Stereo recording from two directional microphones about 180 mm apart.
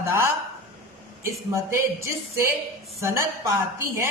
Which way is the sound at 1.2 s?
15° right (ahead or behind).